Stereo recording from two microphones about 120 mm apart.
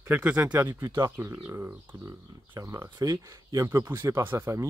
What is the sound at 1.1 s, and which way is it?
Speech, 20° right (ahead or behind).